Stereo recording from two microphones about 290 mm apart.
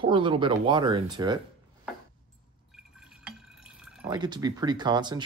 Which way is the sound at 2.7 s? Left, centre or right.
Centre.